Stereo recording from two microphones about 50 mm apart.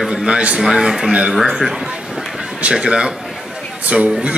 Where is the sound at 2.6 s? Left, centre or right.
Right.